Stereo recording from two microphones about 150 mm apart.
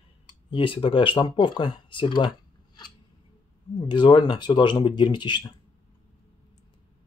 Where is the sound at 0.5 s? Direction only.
30° left (ahead or behind).